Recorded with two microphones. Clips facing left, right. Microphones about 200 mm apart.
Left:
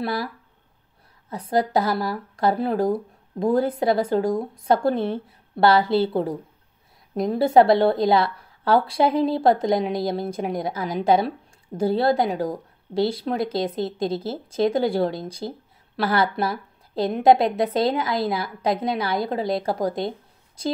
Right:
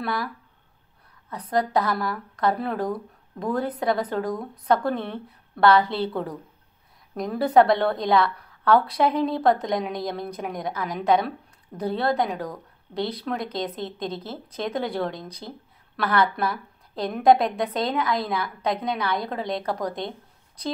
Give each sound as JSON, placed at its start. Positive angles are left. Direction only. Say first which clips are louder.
{"t": 0.0, "sound": "a woman's voice", "louder": "left 2 dB", "side_deg": 30}
{"t": 1.5, "sound": "a woman's voice", "louder": "left 2 dB", "side_deg": 30}